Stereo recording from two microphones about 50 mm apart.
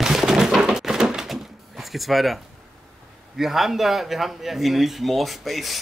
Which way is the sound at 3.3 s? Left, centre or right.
Centre.